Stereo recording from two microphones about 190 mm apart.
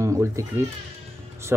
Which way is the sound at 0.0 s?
15° right (ahead or behind).